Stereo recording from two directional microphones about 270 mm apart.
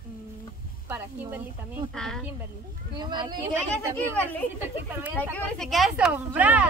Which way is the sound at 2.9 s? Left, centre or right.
Centre.